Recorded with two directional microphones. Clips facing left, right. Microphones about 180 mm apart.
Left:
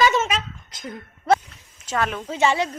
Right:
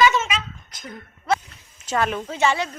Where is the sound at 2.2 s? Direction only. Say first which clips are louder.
Left 1 dB; 15° left (ahead or behind).